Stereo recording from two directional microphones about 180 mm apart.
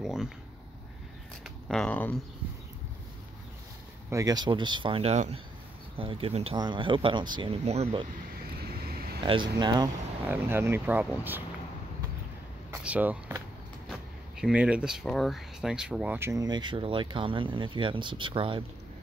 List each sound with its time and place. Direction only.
0.0 s speech: 5° right (ahead or behind)
1.4 s speech: 5° left (ahead or behind)
4.1 s speech: 20° right (ahead or behind)
8.5 s vehicle: 60° right (ahead or behind)
9.2 s speech: 25° right (ahead or behind)
10.2 s speech: 10° right (ahead or behind)
12.8 s speech: 5° right (ahead or behind); by 18.6 s 30° right (ahead or behind)